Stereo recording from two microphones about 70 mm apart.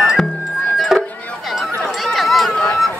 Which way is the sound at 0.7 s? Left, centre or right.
Centre.